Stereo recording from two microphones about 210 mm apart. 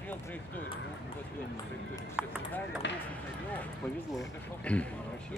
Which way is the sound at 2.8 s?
60° left (ahead or behind).